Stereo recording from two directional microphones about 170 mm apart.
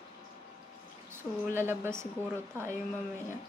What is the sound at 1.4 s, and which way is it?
Speech, 15° right (ahead or behind).